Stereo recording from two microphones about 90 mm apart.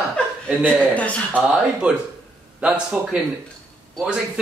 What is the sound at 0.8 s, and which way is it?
Speech, 15° left (ahead or behind).